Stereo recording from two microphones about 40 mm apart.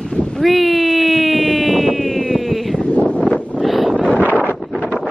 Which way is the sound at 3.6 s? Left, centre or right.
Centre.